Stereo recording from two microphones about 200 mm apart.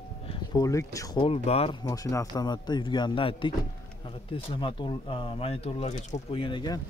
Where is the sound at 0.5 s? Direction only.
15° left (ahead or behind).